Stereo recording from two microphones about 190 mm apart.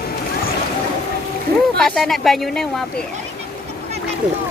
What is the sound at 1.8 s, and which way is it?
Speech, centre (ahead or behind).